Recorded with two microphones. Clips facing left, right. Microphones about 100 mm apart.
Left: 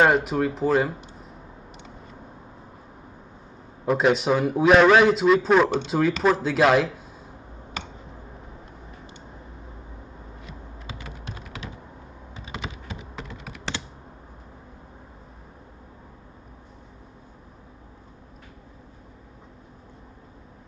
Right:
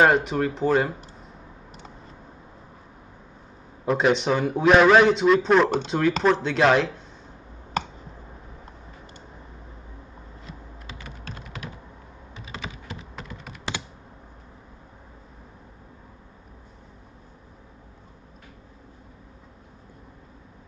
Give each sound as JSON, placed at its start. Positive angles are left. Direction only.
{"t": 0.0, "sound": "a man's voice", "side_deg": 5}
{"t": 3.8, "sound": "a man's voice", "side_deg": 0}
{"t": 12.4, "sound": "computer keyboard", "side_deg": 25}
{"t": 13.3, "sound": "computer keyboard", "side_deg": 0}